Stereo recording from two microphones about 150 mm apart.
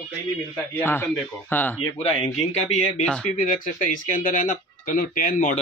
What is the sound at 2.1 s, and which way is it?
Speech, 45° left (ahead or behind).